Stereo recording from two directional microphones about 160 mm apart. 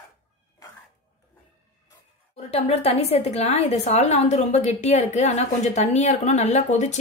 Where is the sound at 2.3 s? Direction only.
40° left (ahead or behind).